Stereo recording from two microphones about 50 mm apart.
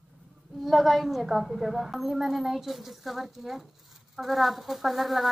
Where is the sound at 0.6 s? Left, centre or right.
Centre.